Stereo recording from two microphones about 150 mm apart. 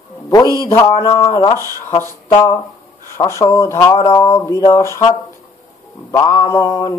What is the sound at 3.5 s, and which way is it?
Mantra, 20° left (ahead or behind).